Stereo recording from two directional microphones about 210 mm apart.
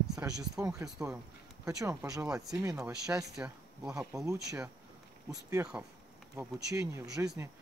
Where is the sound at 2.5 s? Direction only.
15° right (ahead or behind).